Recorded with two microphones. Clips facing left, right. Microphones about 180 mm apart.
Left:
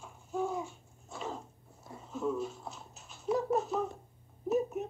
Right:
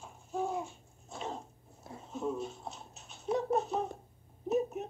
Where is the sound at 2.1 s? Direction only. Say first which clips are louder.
Left 2 dB; 25° right (ahead or behind).